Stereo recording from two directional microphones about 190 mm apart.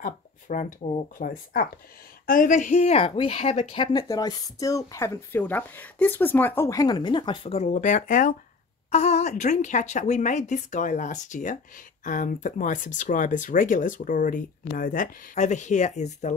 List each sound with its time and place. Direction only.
0.0 s a woman's voice: 45° left (ahead or behind)